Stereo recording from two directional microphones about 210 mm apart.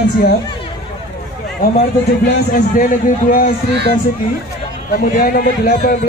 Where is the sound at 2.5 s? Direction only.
40° left (ahead or behind).